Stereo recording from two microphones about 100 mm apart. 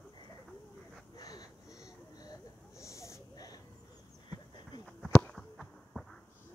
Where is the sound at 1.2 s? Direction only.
40° left (ahead or behind).